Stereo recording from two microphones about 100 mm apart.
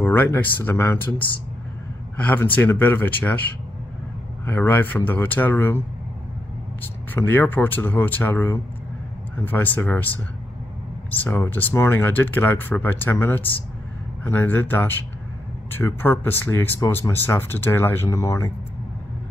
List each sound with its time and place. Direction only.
0.0 s a man's voice: 20° left (ahead or behind)
4.5 s speech: 20° left (ahead or behind)
6.8 s speech: 20° left (ahead or behind)
11.1 s speech: 20° left (ahead or behind)